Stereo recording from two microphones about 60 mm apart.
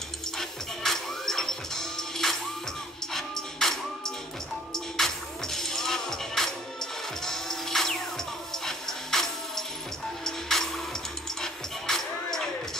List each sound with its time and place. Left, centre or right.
0.4 s music: centre